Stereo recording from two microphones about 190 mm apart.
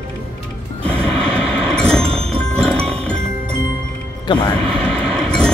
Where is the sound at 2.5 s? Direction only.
5° left (ahead or behind).